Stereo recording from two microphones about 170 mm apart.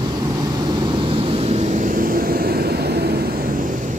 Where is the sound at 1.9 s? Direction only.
55° right (ahead or behind).